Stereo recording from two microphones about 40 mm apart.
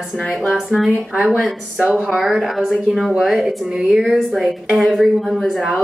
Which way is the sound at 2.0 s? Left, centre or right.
Centre.